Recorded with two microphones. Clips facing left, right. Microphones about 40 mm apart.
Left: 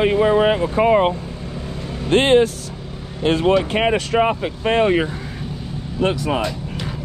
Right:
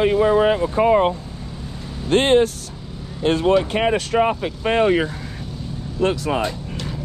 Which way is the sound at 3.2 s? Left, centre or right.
Left.